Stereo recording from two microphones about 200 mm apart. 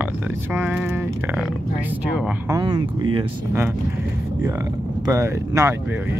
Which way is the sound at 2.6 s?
20° right (ahead or behind).